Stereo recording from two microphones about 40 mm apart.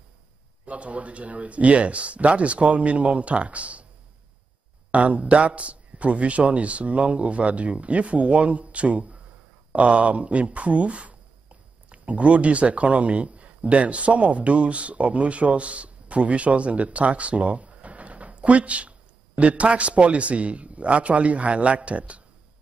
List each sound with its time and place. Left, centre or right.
0.7 s a man's voice: right
4.9 s a man's voice: right